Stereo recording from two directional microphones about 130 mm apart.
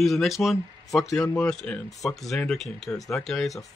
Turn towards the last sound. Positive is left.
turn(degrees=0)  # may be behind; listen again after turning